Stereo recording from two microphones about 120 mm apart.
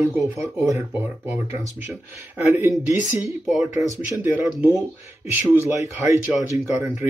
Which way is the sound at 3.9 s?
15° right (ahead or behind).